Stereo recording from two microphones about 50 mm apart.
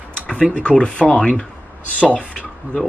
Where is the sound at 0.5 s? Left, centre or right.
Left.